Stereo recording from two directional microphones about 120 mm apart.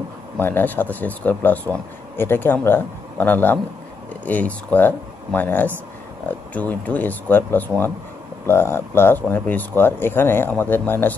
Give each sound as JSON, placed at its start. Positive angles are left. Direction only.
{"t": 0.4, "sound": "speech", "side_deg": 15}